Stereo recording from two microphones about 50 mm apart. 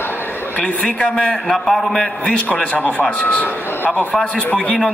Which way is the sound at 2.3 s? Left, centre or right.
Left.